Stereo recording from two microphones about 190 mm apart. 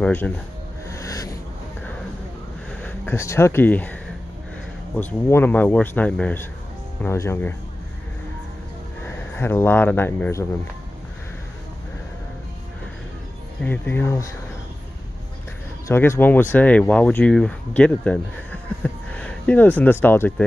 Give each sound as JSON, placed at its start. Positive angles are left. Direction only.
{"t": 0.0, "sound": "speech", "side_deg": 10}
{"t": 0.8, "sound": "a sound", "side_deg": 15}
{"t": 2.8, "sound": "speech", "side_deg": 15}
{"t": 9.3, "sound": "speech", "side_deg": 10}
{"t": 13.6, "sound": "speech", "side_deg": 10}
{"t": 15.9, "sound": "speech", "side_deg": 10}